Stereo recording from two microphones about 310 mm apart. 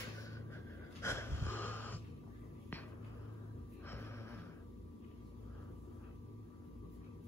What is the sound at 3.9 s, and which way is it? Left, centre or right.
Gasp, centre.